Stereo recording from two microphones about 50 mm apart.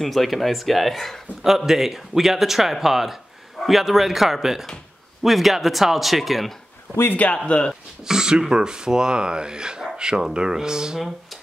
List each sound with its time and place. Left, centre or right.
0.0 s speech: centre
1.7 s speech: centre
7.4 s speech: left
8.0 s speech: centre